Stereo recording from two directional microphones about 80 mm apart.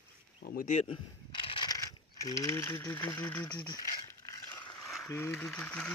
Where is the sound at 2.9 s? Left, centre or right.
Left.